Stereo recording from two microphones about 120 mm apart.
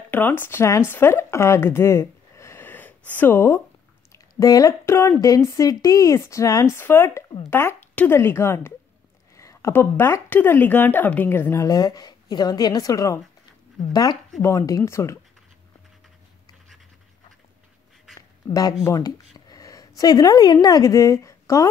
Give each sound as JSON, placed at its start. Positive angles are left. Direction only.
{"t": 0.1, "sound": "a woman's voice", "side_deg": 15}
{"t": 11.6, "sound": "speech", "side_deg": 30}
{"t": 14.4, "sound": "a woman's voice", "side_deg": 25}
{"t": 18.5, "sound": "speech", "side_deg": 30}
{"t": 18.9, "sound": "a sound", "side_deg": 30}
{"t": 20.0, "sound": "a woman's voice", "side_deg": 35}